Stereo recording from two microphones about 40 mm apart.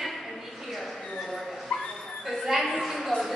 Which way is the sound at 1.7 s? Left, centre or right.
Left.